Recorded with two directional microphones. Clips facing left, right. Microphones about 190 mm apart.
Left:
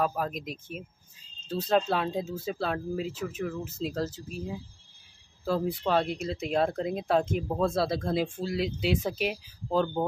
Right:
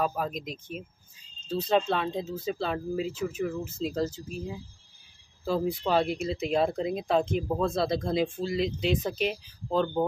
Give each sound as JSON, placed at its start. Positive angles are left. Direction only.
{"t": 0.0, "sound": "speech", "side_deg": 0}